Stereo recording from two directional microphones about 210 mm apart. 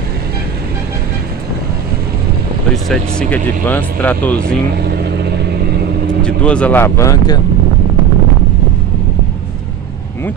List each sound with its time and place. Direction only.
2.7 s speech: 5° left (ahead or behind)
4.8 s vehicle: 50° right (ahead or behind)
6.2 s speech: 5° left (ahead or behind)